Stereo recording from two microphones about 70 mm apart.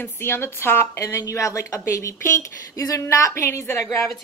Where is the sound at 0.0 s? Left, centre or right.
Left.